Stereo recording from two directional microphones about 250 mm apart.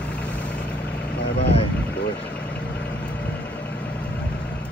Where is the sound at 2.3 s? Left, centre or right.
Centre.